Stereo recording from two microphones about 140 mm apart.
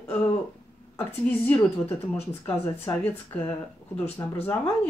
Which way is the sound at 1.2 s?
10° left (ahead or behind).